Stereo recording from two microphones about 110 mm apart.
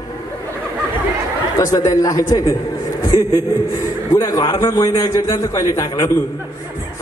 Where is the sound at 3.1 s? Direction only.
50° left (ahead or behind).